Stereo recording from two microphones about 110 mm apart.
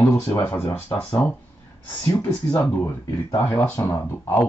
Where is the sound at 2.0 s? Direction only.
15° left (ahead or behind).